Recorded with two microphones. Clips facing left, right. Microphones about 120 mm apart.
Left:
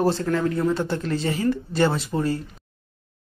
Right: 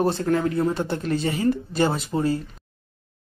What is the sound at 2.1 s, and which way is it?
Speech, 20° right (ahead or behind).